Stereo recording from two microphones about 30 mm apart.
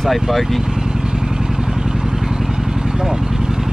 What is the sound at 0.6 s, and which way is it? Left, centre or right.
Vehicle, centre.